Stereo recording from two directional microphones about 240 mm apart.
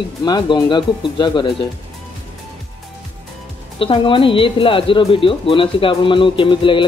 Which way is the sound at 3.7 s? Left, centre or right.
Left.